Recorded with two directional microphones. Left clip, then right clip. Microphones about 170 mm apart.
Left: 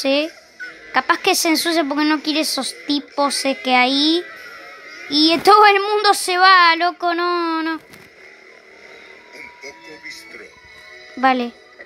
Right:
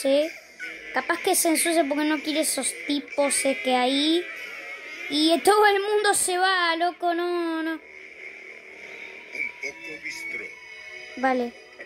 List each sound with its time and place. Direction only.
0.0 s a woman's voice: 15° left (ahead or behind)
0.6 s music: 25° right (ahead or behind)
0.9 s a woman's voice: 15° left (ahead or behind)
4.3 s a sound: 25° right (ahead or behind)
5.1 s a woman's voice: 15° left (ahead or behind)
9.3 s a sound: 30° right (ahead or behind)
11.1 s a woman's voice: 15° left (ahead or behind)